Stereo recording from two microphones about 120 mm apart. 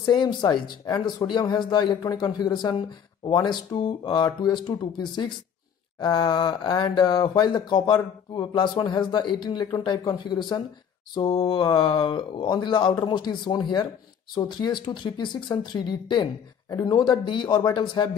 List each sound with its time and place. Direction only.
0.0 s speech: 40° left (ahead or behind)